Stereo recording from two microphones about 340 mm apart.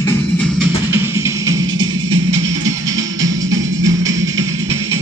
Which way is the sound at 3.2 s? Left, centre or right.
Right.